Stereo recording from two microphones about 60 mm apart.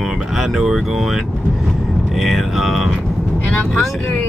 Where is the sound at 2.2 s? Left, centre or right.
Centre.